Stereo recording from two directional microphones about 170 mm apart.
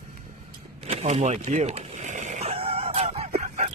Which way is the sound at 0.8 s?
40° right (ahead or behind).